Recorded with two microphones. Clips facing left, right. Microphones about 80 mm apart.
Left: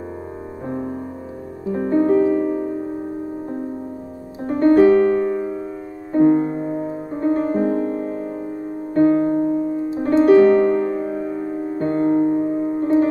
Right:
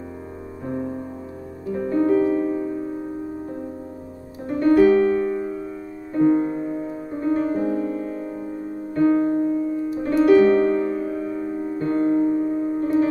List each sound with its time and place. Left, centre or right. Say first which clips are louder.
1.7 s music: left 3 dB; left
4.5 s piano: left 3 dB; left
6.1 s music: left 3 dB; left